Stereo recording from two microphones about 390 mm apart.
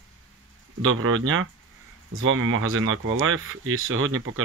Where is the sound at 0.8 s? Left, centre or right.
Right.